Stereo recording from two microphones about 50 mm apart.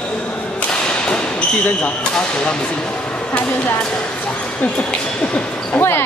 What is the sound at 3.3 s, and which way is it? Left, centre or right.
Speech, left.